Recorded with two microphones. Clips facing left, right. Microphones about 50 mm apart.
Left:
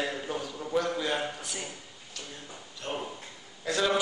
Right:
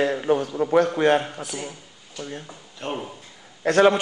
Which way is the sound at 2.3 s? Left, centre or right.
Right.